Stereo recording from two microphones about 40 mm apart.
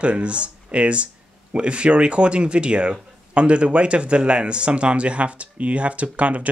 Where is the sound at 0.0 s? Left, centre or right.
Right.